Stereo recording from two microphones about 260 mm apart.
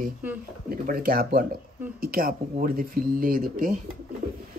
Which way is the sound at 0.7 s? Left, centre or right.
Right.